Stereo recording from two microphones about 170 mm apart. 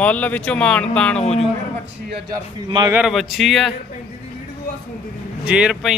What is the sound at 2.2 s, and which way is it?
Speech, 25° right (ahead or behind).